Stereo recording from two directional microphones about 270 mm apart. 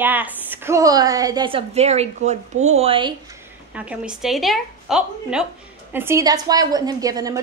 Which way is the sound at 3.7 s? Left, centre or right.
Centre.